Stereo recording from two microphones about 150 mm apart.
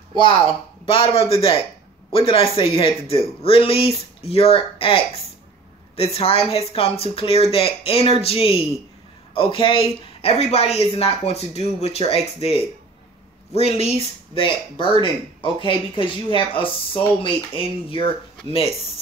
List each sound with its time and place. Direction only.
0.8 s speech: 35° left (ahead or behind)